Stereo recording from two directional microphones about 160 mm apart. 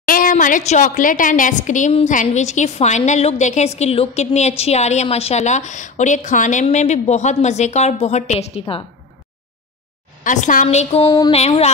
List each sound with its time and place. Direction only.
0.0 s a woman's voice: 60° left (ahead or behind); by 8.8 s 35° left (ahead or behind)
10.2 s a woman's voice: 50° left (ahead or behind)
11.1 s music: 25° left (ahead or behind)
11.3 s a sound: 40° left (ahead or behind)